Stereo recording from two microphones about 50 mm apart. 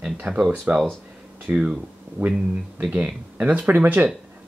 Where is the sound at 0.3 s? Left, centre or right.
Right.